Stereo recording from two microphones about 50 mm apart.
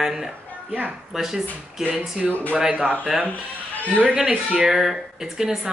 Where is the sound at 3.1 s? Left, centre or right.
Centre.